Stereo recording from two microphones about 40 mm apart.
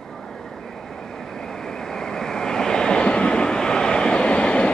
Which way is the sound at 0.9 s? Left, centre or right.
Centre.